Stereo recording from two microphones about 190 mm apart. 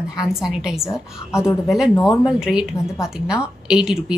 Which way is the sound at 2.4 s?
5° right (ahead or behind).